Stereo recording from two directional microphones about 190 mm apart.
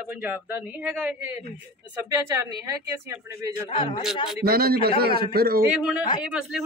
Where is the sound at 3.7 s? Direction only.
25° left (ahead or behind).